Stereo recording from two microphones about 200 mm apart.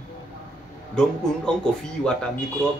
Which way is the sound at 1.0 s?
5° left (ahead or behind).